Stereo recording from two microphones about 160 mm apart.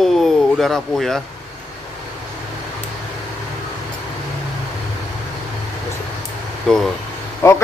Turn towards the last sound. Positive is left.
turn(degrees=15)  # may be behind; listen again after turning